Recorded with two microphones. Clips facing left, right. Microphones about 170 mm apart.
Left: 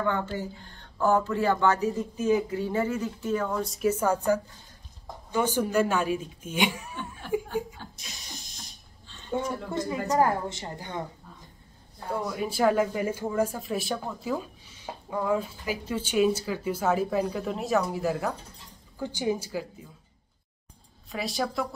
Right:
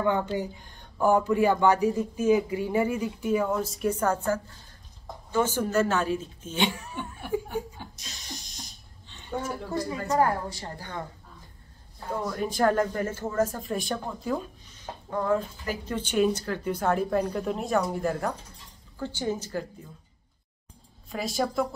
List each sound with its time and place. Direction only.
0.0 s a woman's voice: 15° right (ahead or behind); by 7.0 s 10° left (ahead or behind)
7.4 s chuckle: 15° right (ahead or behind)
9.7 s a woman's voice: 20° left (ahead or behind)
12.2 s a woman's voice: 5° left (ahead or behind)
21.1 s speech: centre (ahead or behind)